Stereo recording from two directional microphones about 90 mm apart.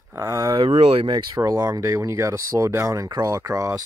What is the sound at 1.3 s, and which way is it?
Speech, 40° right (ahead or behind).